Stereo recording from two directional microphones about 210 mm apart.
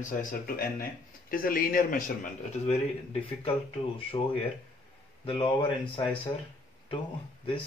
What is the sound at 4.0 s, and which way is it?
Speech, 25° left (ahead or behind).